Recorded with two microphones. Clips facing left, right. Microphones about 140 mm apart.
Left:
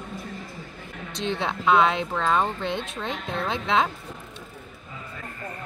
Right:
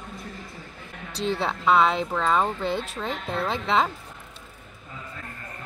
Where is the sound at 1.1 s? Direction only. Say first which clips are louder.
Right 2 dB; 35° right (ahead or behind).